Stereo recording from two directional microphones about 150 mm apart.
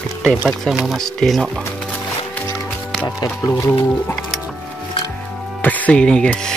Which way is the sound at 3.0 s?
20° left (ahead or behind).